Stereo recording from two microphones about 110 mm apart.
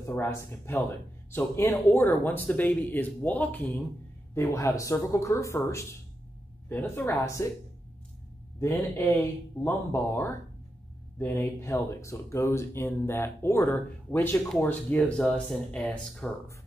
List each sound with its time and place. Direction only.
0.0 s speech: 25° left (ahead or behind)
8.5 s speech: 25° left (ahead or behind); by 16.3 s 10° left (ahead or behind)